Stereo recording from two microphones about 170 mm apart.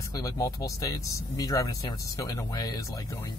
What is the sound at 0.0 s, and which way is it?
Speech, 20° left (ahead or behind).